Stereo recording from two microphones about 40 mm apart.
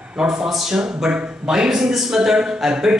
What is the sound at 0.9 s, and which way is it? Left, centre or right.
A man's voice, right.